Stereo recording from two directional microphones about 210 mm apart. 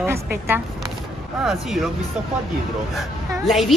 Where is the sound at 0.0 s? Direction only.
10° right (ahead or behind).